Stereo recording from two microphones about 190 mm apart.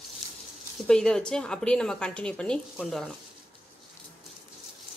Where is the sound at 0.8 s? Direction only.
5° left (ahead or behind).